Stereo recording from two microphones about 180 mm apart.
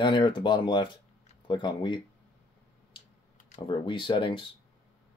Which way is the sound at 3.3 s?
40° left (ahead or behind).